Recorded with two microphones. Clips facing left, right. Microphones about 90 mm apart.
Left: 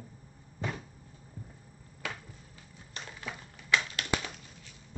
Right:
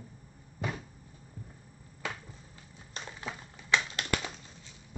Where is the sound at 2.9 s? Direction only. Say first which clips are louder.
Right 1 dB; 25° right (ahead or behind).